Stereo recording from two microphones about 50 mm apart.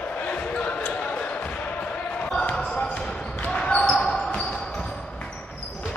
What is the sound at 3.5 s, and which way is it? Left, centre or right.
Basketball bounce, centre.